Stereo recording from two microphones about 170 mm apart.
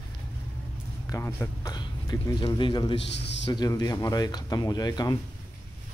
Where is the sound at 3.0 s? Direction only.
90° left.